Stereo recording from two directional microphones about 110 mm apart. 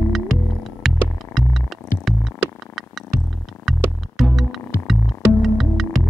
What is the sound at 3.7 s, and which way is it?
Music, centre (ahead or behind).